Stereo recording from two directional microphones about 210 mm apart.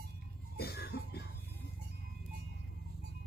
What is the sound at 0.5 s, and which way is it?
Cough, 50° left (ahead or behind).